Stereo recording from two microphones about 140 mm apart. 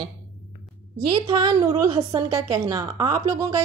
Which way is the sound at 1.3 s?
30° right (ahead or behind).